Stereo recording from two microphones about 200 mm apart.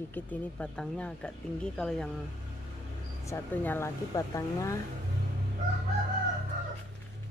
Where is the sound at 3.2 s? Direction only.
10° left (ahead or behind).